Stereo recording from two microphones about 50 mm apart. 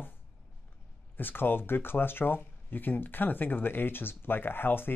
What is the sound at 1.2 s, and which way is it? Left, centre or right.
Speech, left.